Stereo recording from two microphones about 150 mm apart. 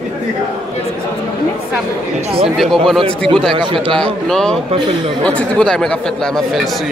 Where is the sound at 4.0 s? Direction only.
5° left (ahead or behind).